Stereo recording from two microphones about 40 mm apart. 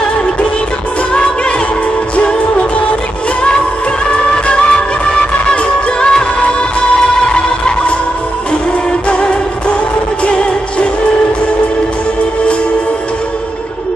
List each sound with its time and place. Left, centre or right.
4.1 s music: left
9.1 s music: left